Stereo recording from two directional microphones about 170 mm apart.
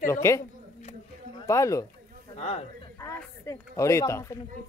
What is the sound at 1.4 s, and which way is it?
Speech, 15° left (ahead or behind).